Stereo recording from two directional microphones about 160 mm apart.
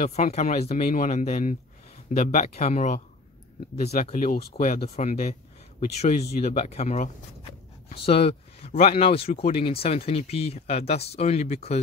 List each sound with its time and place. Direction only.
0.0 s speech: 45° left (ahead or behind); by 4.6 s 70° left (ahead or behind)
4.8 s speech: 45° left (ahead or behind)